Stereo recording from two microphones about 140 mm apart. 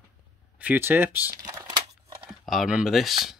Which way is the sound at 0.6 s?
15° right (ahead or behind).